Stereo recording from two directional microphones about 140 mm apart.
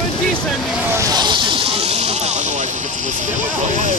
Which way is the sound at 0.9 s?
25° right (ahead or behind).